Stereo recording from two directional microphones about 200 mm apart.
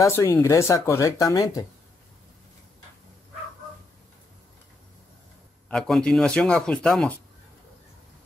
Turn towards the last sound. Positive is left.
turn(degrees=5)  # may be behind; listen again after turning